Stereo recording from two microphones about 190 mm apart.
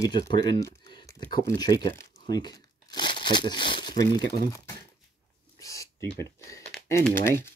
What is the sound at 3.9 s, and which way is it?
Speech, 50° right (ahead or behind).